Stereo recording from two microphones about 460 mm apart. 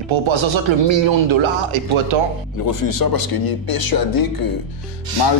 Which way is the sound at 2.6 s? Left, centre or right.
Left.